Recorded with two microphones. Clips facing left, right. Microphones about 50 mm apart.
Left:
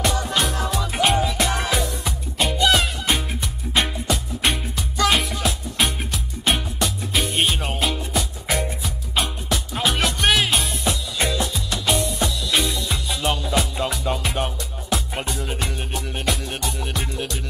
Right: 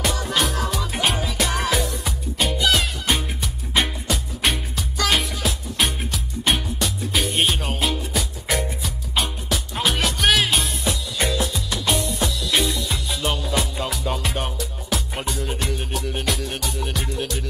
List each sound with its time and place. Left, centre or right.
0.0 s music: centre